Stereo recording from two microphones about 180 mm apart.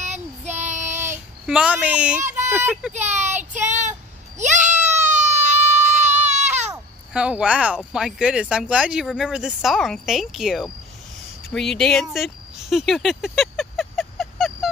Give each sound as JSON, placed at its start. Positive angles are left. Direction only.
{"t": 0.0, "sound": "child singing", "side_deg": -40}
{"t": 0.9, "sound": "child singing", "side_deg": -15}
{"t": 1.4, "sound": "speech", "side_deg": -5}
{"t": 2.9, "sound": "speech", "side_deg": -40}
{"t": 4.4, "sound": "a sound", "side_deg": -40}
{"t": 7.2, "sound": "speech", "side_deg": -5}
{"t": 11.5, "sound": "a sound", "side_deg": 5}